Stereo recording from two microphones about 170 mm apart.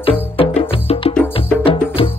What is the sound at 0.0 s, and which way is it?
Music, 35° left (ahead or behind).